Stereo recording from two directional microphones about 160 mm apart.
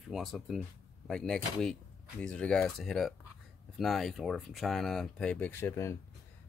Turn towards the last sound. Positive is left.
turn(degrees=15)  # may be behind; listen again after turning